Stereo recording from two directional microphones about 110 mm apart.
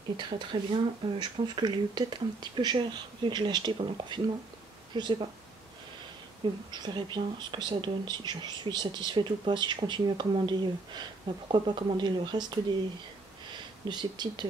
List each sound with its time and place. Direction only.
0.2 s speech: 45° right (ahead or behind)
6.7 s speech: 45° right (ahead or behind)
13.8 s speech: 40° right (ahead or behind)